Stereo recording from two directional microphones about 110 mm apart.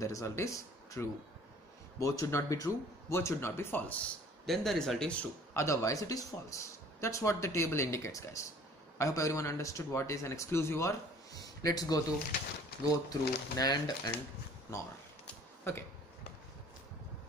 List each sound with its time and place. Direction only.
0.0 s a man's voice: 30° left (ahead or behind)
4.5 s speech: 5° left (ahead or behind)
5.5 s a man's voice: 25° left (ahead or behind)
15.7 s a man's voice: 25° left (ahead or behind)